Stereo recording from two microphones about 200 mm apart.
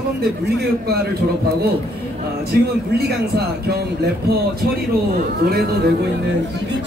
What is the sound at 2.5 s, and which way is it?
Speech, 50° right (ahead or behind).